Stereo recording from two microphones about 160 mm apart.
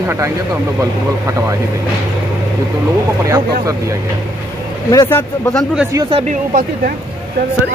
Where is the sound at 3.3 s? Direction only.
20° right (ahead or behind).